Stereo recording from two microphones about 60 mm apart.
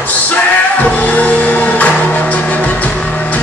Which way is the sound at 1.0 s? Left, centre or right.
Left.